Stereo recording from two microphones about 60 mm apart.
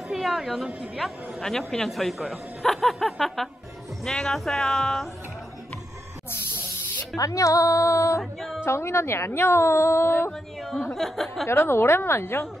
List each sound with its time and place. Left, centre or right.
0.1 s speech: centre
6.3 s snake: left
7.2 s speech: left
8.2 s music: centre
8.6 s a woman's voice: left
10.6 s speech: centre
11.4 s a woman's voice: left